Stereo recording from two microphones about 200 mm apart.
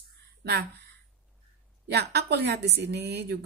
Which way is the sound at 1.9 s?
55° right (ahead or behind).